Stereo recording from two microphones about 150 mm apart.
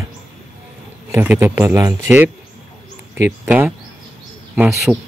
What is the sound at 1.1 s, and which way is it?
Speech, 15° right (ahead or behind).